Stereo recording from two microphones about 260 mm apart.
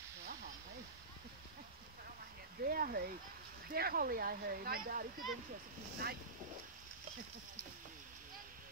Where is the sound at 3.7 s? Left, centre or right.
Right.